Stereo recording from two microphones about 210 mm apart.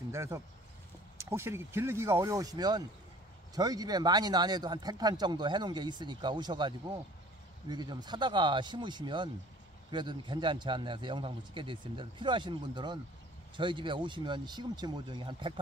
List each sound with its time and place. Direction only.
0.1 s speech: 15° right (ahead or behind)